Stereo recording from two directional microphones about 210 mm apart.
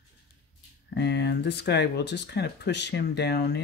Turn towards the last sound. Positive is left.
turn(degrees=50)  # may be behind; listen again after turning